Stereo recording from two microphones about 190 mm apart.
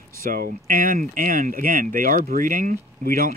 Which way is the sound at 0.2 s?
50° right (ahead or behind).